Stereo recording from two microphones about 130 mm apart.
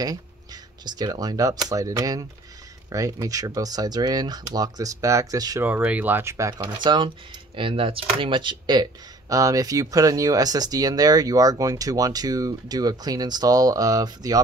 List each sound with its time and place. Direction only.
0.8 s speech: 30° right (ahead or behind)
5.6 s speech: 10° right (ahead or behind)
6.8 s speech: 35° right (ahead or behind)